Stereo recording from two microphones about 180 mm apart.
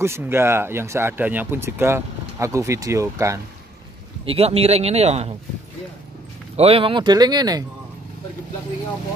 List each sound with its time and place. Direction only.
0.0 s speech: 15° right (ahead or behind)
4.3 s speech: 35° right (ahead or behind)
6.5 s speech: 35° right (ahead or behind)